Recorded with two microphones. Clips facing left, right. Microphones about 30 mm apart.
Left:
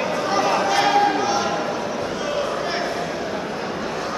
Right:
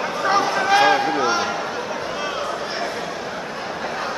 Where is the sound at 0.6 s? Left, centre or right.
Centre.